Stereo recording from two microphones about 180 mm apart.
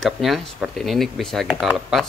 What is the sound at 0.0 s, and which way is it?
Speech, centre (ahead or behind).